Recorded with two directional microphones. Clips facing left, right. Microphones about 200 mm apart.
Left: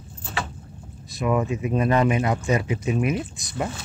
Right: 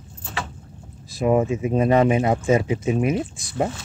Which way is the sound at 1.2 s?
30° right (ahead or behind).